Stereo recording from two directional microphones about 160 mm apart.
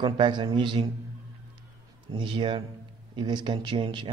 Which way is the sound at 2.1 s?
30° right (ahead or behind).